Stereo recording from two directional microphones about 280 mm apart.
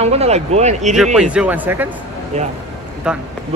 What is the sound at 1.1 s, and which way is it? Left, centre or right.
Speech, centre.